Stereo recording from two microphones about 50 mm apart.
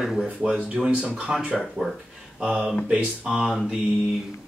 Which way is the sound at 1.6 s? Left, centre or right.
Centre.